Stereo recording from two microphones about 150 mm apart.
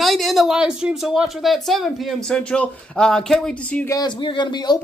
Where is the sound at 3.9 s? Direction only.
30° left (ahead or behind).